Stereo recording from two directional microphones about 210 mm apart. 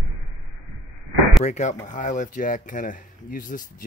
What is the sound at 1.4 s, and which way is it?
Speech, 35° left (ahead or behind).